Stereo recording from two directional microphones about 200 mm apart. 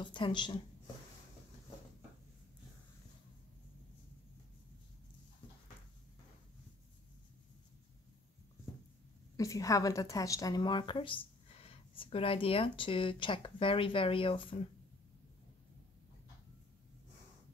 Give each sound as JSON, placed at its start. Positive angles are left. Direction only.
{"t": 0.0, "sound": "a woman's voice", "side_deg": 25}
{"t": 9.4, "sound": "a woman's voice", "side_deg": 15}